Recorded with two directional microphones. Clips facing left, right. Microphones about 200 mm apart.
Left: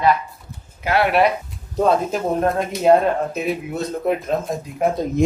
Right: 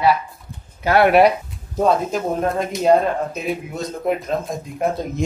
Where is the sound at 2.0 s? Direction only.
5° left (ahead or behind).